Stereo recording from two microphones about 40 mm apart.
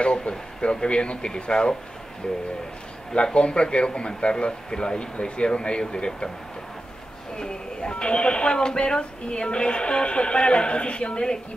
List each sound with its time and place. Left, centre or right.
0.0 s speech: left
3.3 s speech: left
7.3 s speech: centre